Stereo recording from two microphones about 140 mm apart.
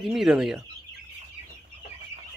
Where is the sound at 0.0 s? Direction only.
5° right (ahead or behind).